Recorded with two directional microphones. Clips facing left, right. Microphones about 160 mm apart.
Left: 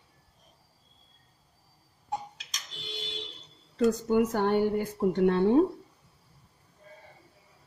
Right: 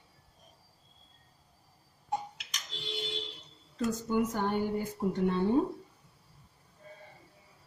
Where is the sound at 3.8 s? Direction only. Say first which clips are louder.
Left 6 dB; 65° left (ahead or behind).